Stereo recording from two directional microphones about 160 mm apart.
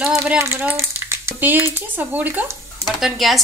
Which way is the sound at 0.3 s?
15° right (ahead or behind).